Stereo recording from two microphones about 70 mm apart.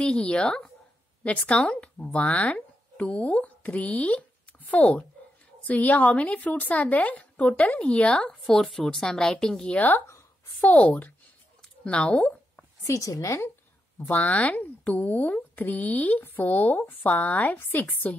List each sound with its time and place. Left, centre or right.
0.0 s a woman's voice: centre
9.8 s speech: left
11.6 s a sound: centre
12.8 s a woman's voice: left
13.9 s a woman's voice: left
14.3 s speech: centre